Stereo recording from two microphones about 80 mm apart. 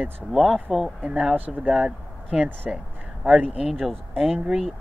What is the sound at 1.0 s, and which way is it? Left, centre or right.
Speech, centre.